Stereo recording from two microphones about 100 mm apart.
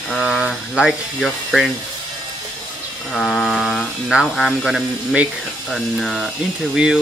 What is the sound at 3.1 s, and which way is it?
Speech, 5° left (ahead or behind).